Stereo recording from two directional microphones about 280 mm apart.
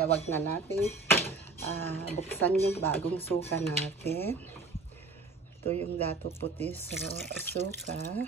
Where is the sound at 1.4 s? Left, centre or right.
Centre.